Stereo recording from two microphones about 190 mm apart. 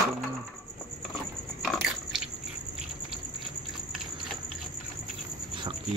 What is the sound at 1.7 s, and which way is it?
Biting, centre (ahead or behind).